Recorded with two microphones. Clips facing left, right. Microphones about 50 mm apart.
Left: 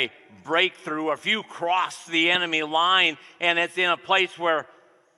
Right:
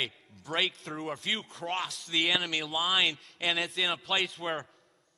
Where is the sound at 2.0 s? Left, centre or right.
Left.